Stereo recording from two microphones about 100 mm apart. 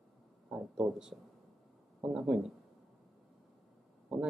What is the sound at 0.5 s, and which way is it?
Speech, 10° right (ahead or behind).